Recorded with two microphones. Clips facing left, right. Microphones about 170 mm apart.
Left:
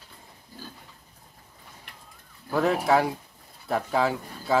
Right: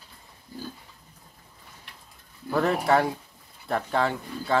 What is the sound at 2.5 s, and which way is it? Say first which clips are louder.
Speech: even; centre (ahead or behind).